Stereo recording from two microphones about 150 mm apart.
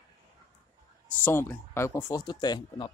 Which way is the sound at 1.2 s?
15° left (ahead or behind).